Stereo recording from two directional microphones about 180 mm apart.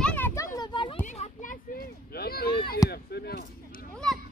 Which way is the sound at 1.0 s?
45° left (ahead or behind).